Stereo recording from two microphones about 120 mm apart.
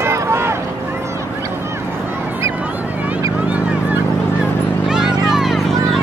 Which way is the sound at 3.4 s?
10° right (ahead or behind).